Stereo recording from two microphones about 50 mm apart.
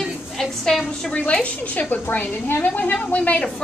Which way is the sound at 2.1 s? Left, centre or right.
Left.